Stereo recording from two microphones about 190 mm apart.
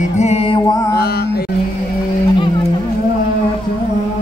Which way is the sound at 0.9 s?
55° left (ahead or behind).